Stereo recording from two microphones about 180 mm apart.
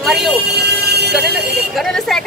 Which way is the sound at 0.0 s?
Centre (ahead or behind).